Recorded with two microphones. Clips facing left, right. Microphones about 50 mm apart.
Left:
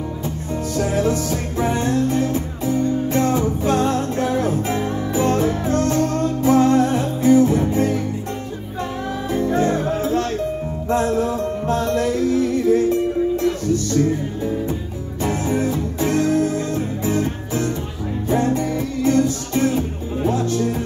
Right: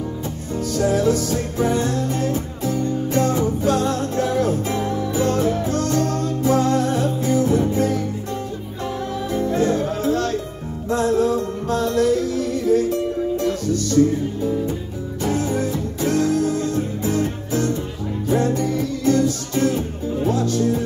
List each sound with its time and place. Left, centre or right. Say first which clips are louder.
0.7 s music: right 2 dB; left
9.3 s music: left 1 dB; left
15.3 s music: left 1 dB; left